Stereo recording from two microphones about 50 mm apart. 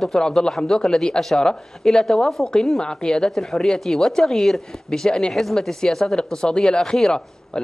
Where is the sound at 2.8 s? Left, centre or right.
Centre.